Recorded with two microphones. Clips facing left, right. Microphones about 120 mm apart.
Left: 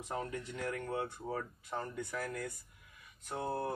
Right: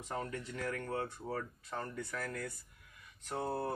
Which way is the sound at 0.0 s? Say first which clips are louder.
Left 1 dB; 15° left (ahead or behind).